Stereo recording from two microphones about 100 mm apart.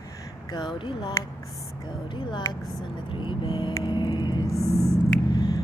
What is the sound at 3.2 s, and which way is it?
Speech, 50° left (ahead or behind).